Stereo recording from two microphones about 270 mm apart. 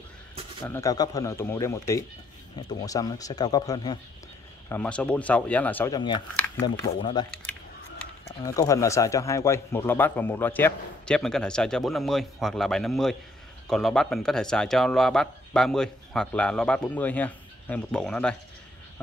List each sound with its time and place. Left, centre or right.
0.7 s speech: centre
6.9 s speech: centre